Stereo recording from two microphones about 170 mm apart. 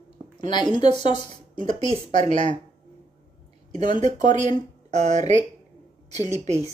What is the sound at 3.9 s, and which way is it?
A woman's voice, 40° right (ahead or behind).